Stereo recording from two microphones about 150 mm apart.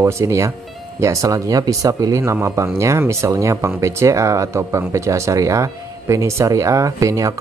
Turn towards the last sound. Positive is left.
turn(degrees=-20)  # may be behind; listen again after turning